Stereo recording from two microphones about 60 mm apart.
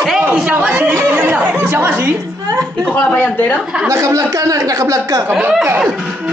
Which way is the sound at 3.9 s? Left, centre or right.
Right.